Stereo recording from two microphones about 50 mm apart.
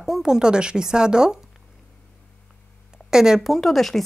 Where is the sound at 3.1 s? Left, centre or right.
Centre.